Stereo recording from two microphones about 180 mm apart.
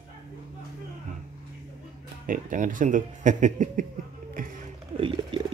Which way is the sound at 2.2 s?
45° right (ahead or behind).